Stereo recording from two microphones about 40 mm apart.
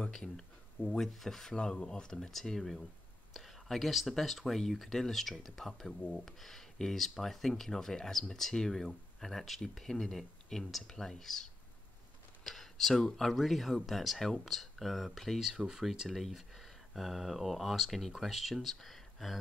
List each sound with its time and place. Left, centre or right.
0.1 s speech: centre
15.4 s speech: centre
16.1 s speech: centre